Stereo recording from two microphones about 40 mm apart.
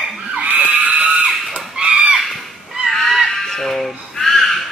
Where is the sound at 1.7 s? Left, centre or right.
Right.